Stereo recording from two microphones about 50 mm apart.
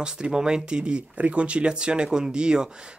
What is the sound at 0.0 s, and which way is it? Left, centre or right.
Speech, centre.